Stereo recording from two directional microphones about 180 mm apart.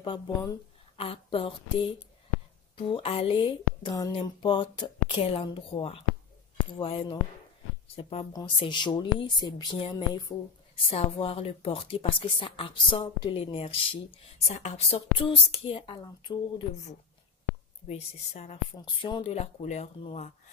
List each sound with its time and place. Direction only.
0.0 s a woman's voice: 25° left (ahead or behind)
2.9 s speech: 30° left (ahead or behind)
17.8 s speech: 35° left (ahead or behind)